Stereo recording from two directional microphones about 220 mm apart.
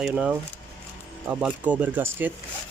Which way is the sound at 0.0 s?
5° right (ahead or behind).